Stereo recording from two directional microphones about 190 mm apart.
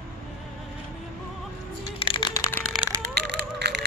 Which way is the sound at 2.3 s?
15° left (ahead or behind).